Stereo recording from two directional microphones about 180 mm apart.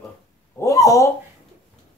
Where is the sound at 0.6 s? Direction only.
20° left (ahead or behind).